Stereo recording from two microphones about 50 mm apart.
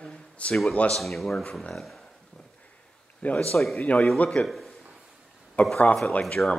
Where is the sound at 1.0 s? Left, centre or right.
Centre.